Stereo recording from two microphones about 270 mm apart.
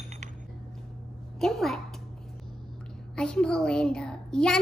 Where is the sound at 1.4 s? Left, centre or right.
Centre.